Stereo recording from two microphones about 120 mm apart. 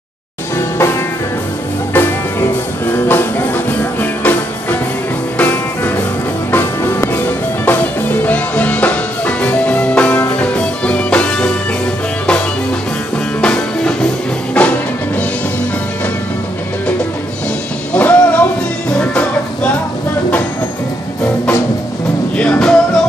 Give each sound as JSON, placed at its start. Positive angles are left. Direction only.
{"t": 0.6, "sound": "music", "side_deg": 25}
{"t": 13.4, "sound": "music", "side_deg": 10}
{"t": 17.9, "sound": "music", "side_deg": 15}
{"t": 22.4, "sound": "music", "side_deg": 10}